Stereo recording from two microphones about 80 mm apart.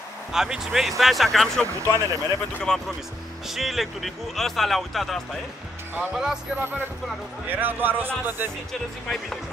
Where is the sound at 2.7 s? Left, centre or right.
Centre.